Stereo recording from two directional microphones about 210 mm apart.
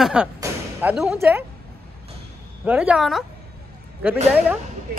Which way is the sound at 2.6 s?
5° right (ahead or behind).